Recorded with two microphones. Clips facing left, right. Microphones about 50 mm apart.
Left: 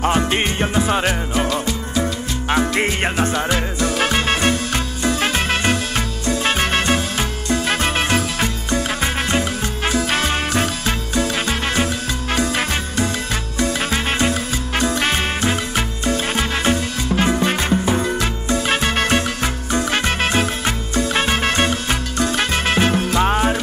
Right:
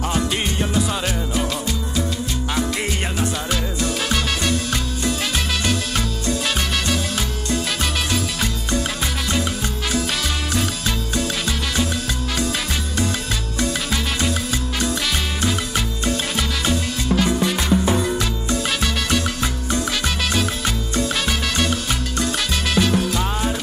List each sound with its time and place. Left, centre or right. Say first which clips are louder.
0.0 s music: left 4 dB; left
13.7 s music: left 4 dB; left